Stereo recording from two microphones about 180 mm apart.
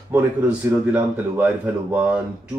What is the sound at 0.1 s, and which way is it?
Speech, 10° right (ahead or behind).